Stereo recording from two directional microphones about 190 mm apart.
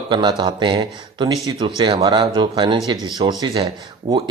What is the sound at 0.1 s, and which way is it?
Speech, 25° right (ahead or behind).